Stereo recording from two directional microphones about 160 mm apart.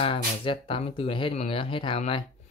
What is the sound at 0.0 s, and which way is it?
Speech, 35° left (ahead or behind).